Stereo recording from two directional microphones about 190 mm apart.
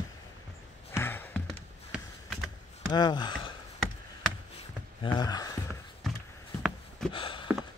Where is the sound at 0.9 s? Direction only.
10° left (ahead or behind).